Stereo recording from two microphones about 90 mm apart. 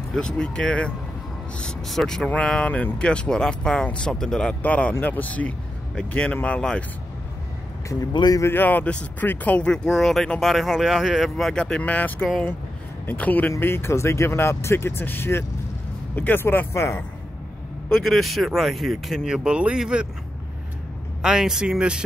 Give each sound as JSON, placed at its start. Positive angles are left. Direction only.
{"t": 0.1, "sound": "speech", "side_deg": 10}
{"t": 8.1, "sound": "speech", "side_deg": 55}
{"t": 8.4, "sound": "speech", "side_deg": 25}
{"t": 17.8, "sound": "speech", "side_deg": 5}
{"t": 21.2, "sound": "speech", "side_deg": -5}